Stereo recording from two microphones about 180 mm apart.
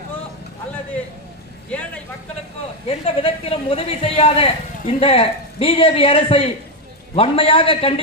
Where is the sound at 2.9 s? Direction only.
30° left (ahead or behind).